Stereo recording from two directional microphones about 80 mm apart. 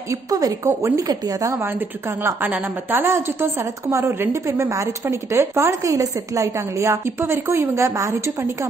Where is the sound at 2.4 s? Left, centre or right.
Right.